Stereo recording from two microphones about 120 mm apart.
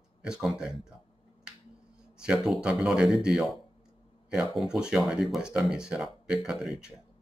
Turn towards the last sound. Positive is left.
turn(degrees=-5)  # may be behind; listen again after turning